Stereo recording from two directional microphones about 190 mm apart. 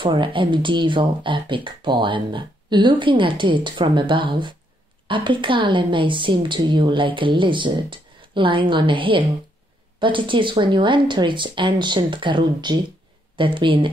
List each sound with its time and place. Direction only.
0.0 s speech: 25° right (ahead or behind)